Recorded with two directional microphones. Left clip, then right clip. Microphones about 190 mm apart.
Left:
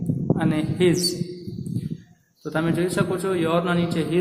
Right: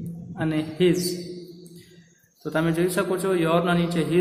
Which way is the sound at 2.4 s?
Centre (ahead or behind).